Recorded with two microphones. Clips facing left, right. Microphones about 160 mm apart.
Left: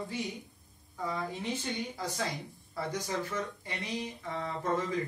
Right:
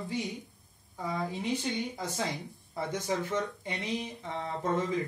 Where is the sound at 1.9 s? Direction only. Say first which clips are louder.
Right 1 dB; 20° right (ahead or behind).